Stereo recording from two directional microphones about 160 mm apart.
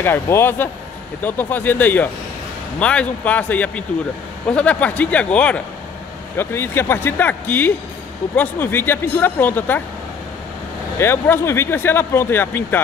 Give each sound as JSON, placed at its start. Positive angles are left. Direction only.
{"t": 0.0, "sound": "speech", "side_deg": 15}
{"t": 11.0, "sound": "speech", "side_deg": 15}